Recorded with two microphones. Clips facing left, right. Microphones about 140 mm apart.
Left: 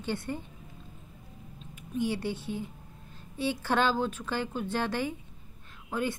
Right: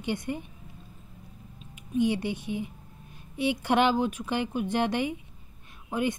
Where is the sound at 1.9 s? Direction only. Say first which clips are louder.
Right 4 dB; 20° right (ahead or behind).